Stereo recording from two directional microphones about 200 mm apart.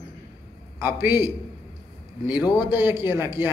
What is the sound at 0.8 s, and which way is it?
Speech, 10° right (ahead or behind).